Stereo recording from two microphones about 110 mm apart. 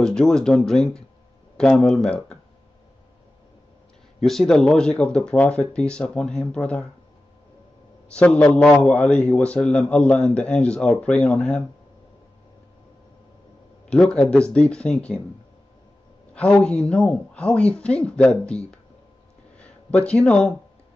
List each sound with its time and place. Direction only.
0.0 s a man's voice: 5° left (ahead or behind)
4.2 s a man's voice: 5° left (ahead or behind)
8.1 s a man's voice: 10° left (ahead or behind)
13.8 s a man's voice: 10° left (ahead or behind)
16.3 s a man's voice: 10° left (ahead or behind)